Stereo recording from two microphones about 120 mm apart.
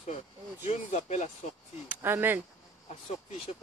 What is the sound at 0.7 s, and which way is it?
Speech, 75° left (ahead or behind).